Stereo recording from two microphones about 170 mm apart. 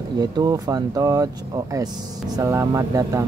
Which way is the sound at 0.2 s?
20° right (ahead or behind).